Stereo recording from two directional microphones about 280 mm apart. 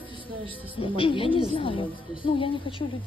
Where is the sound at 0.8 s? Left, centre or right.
Centre.